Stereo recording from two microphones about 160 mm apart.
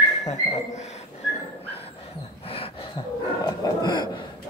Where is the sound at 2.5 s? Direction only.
35° left (ahead or behind).